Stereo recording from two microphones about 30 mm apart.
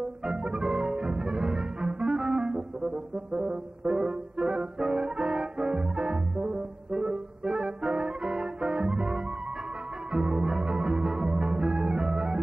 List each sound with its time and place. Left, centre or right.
0.2 s music: right
3.3 s brass instrument: right
10.1 s music: right